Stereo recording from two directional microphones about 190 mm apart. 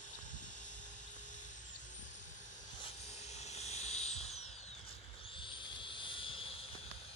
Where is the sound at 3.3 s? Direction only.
35° left (ahead or behind).